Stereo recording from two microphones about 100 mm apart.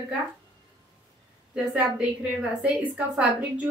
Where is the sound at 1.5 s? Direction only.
10° right (ahead or behind).